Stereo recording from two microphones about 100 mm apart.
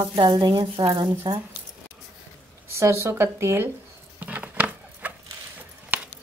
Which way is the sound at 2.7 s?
25° right (ahead or behind).